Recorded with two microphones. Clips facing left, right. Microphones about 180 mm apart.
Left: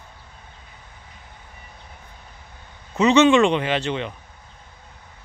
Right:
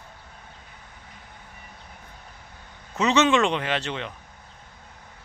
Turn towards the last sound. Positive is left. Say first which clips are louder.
# left 5 dB
turn(degrees=0)  # may be behind; listen again after turning